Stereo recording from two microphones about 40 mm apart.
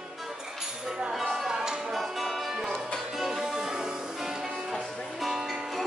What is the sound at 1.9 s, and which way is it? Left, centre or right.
Music, centre.